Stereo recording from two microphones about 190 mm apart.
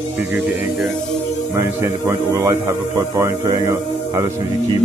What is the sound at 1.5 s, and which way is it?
Speech, 15° right (ahead or behind).